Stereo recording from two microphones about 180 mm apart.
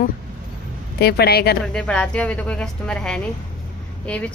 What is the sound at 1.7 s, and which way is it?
A woman's voice, 5° left (ahead or behind).